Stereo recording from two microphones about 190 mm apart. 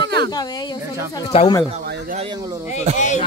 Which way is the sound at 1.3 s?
25° left (ahead or behind).